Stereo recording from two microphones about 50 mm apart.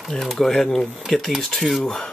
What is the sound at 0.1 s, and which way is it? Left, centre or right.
Speech, centre.